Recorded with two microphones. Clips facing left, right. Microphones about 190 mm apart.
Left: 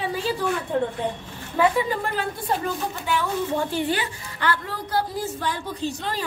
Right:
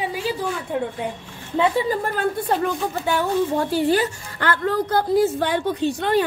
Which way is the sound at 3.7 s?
35° right (ahead or behind).